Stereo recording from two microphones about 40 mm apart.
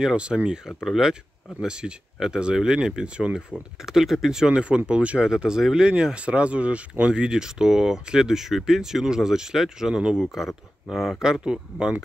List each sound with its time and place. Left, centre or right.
0.0 s speech: right
0.8 s speech: centre
1.7 s speech: right
3.8 s speech: centre
4.5 s speech: right
5.2 s speech: centre
6.1 s speech: right; by 11.4 s centre
11.4 s speech: centre